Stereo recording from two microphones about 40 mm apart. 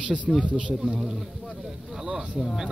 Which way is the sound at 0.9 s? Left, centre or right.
Centre.